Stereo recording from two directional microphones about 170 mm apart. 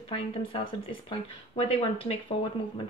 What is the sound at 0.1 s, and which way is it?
Speech, 35° left (ahead or behind).